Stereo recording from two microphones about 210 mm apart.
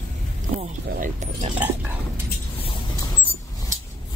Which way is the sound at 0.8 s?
35° right (ahead or behind).